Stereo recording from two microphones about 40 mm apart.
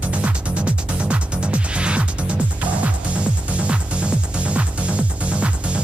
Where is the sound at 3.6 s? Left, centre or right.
Right.